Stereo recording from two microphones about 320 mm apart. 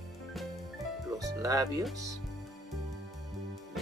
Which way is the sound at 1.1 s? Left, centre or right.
Centre.